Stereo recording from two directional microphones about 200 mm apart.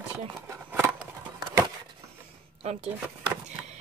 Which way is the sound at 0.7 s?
10° right (ahead or behind).